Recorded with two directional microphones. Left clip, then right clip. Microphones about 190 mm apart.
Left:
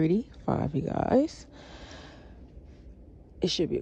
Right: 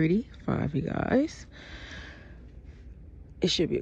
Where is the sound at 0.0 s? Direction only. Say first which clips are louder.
Even; 20° left (ahead or behind).